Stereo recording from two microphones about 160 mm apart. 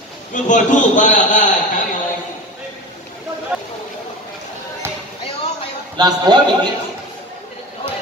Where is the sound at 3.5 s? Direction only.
5° right (ahead or behind).